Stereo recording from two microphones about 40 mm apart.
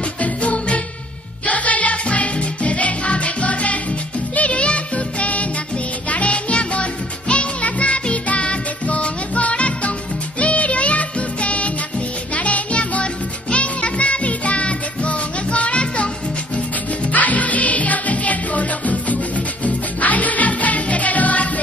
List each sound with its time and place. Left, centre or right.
0.2 s music: left